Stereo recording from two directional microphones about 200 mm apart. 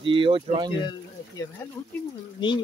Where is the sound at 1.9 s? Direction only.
10° left (ahead or behind).